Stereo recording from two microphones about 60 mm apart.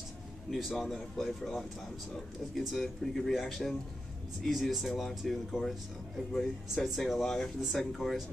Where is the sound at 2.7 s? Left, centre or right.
Centre.